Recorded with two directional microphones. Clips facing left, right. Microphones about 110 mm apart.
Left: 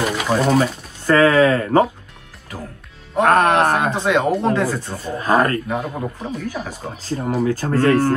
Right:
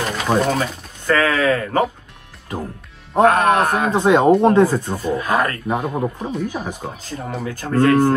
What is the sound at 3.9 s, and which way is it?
Speech, 25° right (ahead or behind).